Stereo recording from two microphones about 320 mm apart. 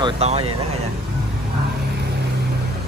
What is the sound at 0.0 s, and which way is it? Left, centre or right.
Speech, centre.